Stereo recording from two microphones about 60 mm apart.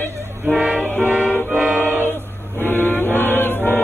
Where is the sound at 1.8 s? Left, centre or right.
Left.